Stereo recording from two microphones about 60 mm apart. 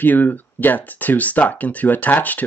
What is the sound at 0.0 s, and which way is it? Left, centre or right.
Speech, left.